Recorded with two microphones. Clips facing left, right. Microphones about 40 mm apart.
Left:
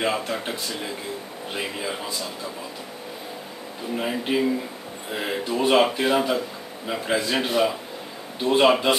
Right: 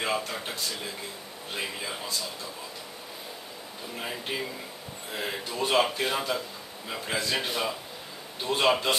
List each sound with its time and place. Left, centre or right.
0.0 s speech: centre
3.9 s speech: left